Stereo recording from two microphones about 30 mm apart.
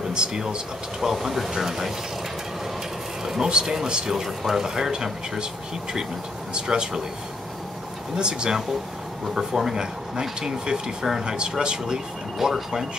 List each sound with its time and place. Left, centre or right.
0.1 s speech: right
1.0 s speech: centre
3.3 s speech: right
6.5 s speech: right
8.2 s speech: right
12.4 s speech: centre